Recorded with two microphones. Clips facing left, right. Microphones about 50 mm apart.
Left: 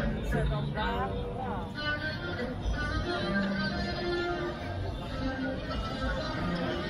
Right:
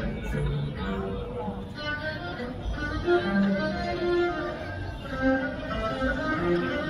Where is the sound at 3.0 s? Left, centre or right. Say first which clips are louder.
Right 10 dB; right.